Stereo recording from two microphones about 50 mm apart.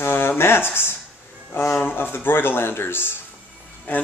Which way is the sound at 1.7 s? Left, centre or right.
Left.